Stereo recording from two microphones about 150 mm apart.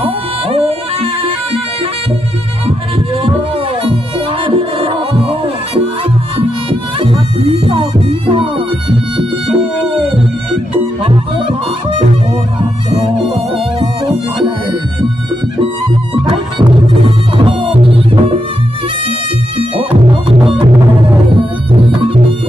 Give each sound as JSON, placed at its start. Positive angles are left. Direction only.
{"t": 0.0, "sound": "music", "side_deg": -40}
{"t": 4.5, "sound": "music", "side_deg": -35}
{"t": 6.3, "sound": "music", "side_deg": -35}
{"t": 10.7, "sound": "music", "side_deg": -35}
{"t": 16.3, "sound": "music", "side_deg": -30}
{"t": 19.8, "sound": "music", "side_deg": -35}